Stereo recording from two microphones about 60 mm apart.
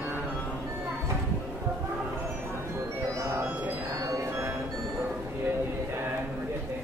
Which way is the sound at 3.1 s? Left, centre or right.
Right.